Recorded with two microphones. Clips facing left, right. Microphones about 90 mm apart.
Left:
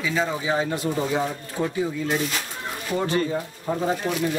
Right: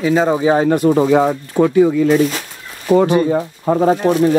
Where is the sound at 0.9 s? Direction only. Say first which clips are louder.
Right 12 dB; 80° right.